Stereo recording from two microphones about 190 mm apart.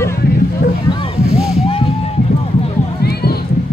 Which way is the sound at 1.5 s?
30° left (ahead or behind).